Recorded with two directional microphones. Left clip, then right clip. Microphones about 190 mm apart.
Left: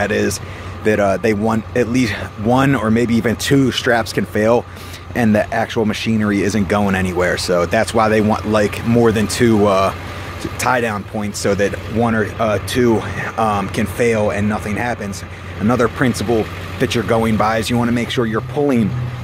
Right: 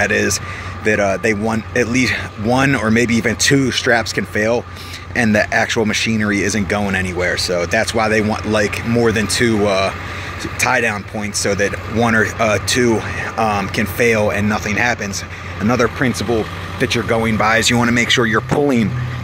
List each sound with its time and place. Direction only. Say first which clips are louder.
0.0 s speech: right 2 dB; 15° left (ahead or behind)
12.0 s speech: right 2 dB; 10° left (ahead or behind)